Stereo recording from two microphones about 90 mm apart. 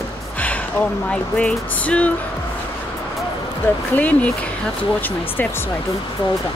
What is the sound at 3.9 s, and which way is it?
Speech, 15° left (ahead or behind).